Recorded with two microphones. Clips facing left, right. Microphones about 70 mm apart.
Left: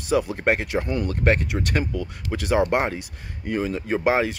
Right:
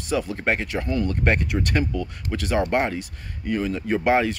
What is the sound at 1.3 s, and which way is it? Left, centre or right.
Speech, centre.